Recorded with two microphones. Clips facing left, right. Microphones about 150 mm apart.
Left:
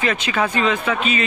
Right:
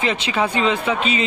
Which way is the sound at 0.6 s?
25° right (ahead or behind).